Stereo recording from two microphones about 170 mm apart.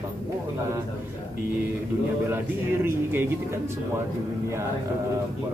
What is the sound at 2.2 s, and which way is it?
A man's voice, 15° right (ahead or behind).